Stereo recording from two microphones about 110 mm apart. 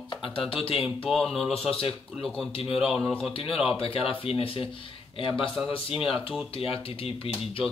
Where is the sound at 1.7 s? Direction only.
55° left (ahead or behind).